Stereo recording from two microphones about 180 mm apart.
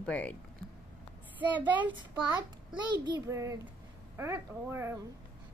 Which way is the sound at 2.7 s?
25° right (ahead or behind).